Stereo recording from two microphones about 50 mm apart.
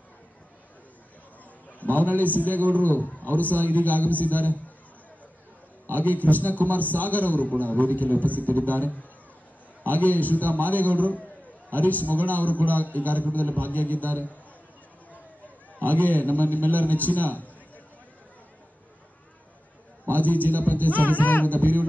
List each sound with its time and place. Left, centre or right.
1.8 s a man's voice: left
5.9 s a man's voice: left
15.8 s a man's voice: left
20.1 s a man's voice: left